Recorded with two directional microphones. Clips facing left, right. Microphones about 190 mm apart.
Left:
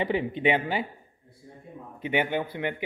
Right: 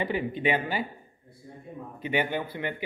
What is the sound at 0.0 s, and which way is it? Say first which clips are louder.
Speech: left 2 dB; 25° left (ahead or behind).